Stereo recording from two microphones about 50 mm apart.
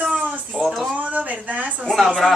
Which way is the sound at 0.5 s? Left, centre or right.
Centre.